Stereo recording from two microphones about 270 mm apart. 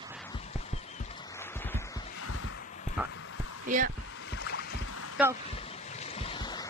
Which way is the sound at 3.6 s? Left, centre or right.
Right.